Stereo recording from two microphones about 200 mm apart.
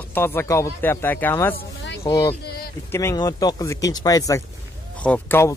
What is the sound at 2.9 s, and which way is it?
Speech, 15° left (ahead or behind).